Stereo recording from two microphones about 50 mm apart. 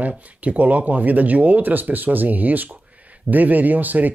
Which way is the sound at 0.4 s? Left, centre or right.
Right.